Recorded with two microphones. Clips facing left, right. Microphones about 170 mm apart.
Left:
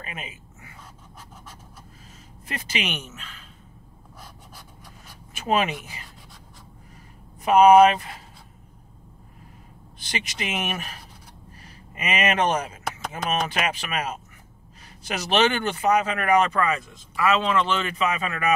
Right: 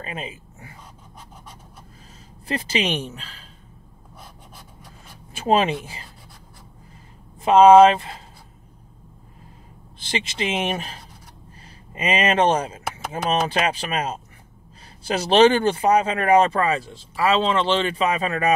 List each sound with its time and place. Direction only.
0.0 s speech: 30° right (ahead or behind)
2.4 s speech: 30° right (ahead or behind)
5.3 s speech: 30° right (ahead or behind)
7.4 s speech: 25° right (ahead or behind)
9.9 s speech: 30° right (ahead or behind)